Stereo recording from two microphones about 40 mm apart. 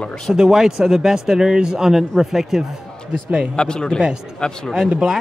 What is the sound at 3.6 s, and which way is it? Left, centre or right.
Speech, left.